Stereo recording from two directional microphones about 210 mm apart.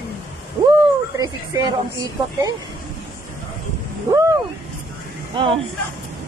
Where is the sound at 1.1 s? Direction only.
20° right (ahead or behind).